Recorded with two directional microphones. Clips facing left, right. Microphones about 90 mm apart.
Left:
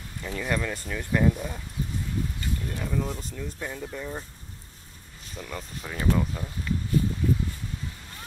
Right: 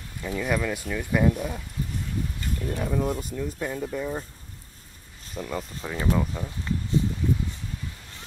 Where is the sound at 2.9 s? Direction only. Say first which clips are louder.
Right 4 dB; 10° right (ahead or behind).